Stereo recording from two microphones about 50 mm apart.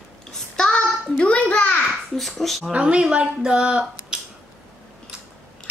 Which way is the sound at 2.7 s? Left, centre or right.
Right.